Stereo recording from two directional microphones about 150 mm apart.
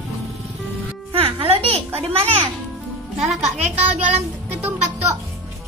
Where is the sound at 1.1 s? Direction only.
40° right (ahead or behind).